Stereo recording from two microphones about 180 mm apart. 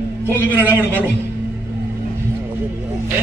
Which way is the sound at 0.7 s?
10° right (ahead or behind).